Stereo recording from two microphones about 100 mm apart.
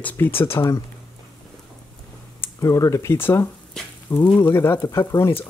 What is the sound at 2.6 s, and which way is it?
Speech, 35° left (ahead or behind).